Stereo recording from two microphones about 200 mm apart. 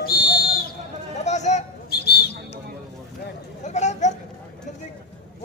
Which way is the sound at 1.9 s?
55° left (ahead or behind).